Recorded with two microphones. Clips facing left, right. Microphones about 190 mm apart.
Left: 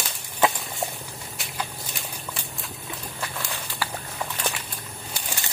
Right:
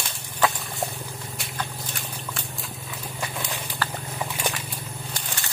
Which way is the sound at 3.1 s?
15° right (ahead or behind).